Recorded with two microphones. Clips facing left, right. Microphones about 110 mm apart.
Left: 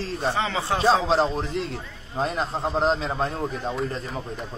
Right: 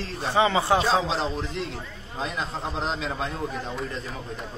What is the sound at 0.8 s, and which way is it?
A man's voice, 50° left (ahead or behind).